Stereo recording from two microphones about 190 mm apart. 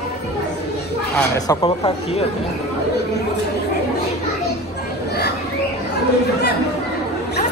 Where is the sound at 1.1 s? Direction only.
20° left (ahead or behind).